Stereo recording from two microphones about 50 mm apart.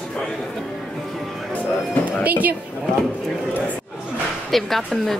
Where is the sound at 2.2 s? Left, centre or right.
Right.